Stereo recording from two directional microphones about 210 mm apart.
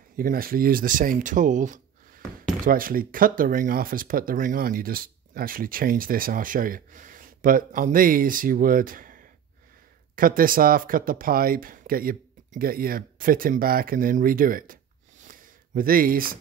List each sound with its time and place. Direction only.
0.2 s speech: 45° right (ahead or behind)